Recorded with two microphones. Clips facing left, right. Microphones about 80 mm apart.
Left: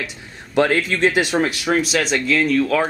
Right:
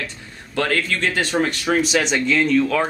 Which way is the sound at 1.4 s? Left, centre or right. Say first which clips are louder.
Even; centre.